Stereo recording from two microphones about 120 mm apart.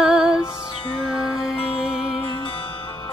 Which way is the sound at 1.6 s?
50° left (ahead or behind).